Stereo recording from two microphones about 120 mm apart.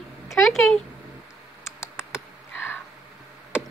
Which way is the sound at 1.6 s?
20° left (ahead or behind).